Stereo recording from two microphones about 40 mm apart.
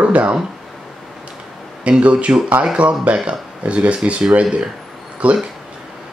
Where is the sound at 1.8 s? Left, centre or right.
Right.